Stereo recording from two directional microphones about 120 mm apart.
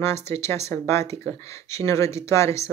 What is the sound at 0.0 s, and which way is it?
Speech, 20° left (ahead or behind).